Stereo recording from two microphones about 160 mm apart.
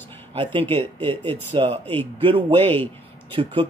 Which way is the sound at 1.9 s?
10° left (ahead or behind).